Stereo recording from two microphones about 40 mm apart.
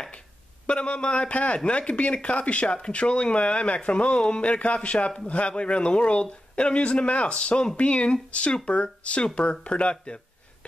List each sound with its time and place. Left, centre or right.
0.7 s speech: left